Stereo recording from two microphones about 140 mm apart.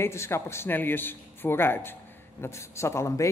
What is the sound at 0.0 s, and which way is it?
A man's voice, 20° left (ahead or behind).